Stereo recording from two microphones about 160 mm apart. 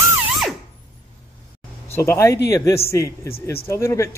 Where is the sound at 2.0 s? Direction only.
15° left (ahead or behind).